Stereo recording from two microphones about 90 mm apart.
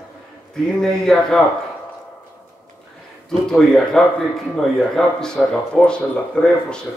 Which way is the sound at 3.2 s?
5° left (ahead or behind).